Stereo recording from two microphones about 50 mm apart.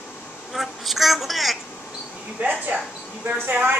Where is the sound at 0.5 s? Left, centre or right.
Centre.